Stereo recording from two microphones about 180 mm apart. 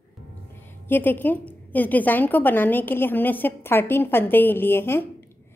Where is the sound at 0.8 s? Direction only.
10° left (ahead or behind).